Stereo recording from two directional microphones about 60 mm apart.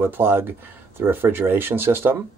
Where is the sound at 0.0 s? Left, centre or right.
Right.